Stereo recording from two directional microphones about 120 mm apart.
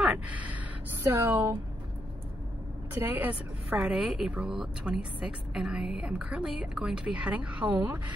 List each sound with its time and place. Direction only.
0.0 s a sound: 10° right (ahead or behind)
1.0 s a woman's voice: 20° right (ahead or behind)
3.0 s a woman's voice: 15° right (ahead or behind)